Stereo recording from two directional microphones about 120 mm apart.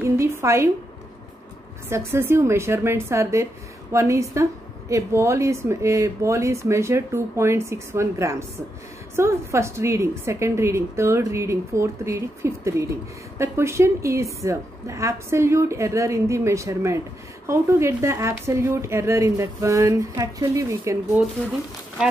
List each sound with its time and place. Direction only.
0.0 s a woman's voice: 20° right (ahead or behind)
1.9 s a woman's voice: 20° right (ahead or behind)